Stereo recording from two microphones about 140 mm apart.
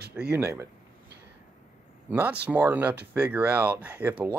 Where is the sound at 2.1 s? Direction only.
10° right (ahead or behind).